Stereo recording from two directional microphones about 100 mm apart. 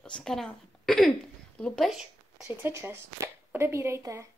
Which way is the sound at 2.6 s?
25° right (ahead or behind).